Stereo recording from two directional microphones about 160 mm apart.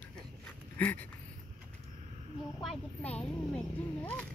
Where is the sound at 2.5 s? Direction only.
5° left (ahead or behind).